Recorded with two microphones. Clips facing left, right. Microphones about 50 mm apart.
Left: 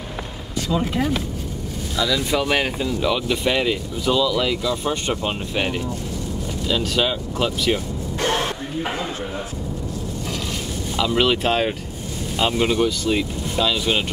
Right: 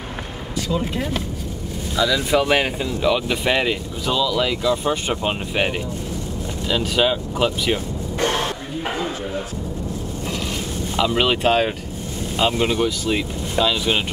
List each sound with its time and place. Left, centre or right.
2.0 s speech: centre
11.0 s speech: centre